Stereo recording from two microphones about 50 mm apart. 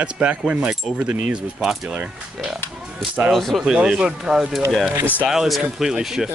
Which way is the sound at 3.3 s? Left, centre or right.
Centre.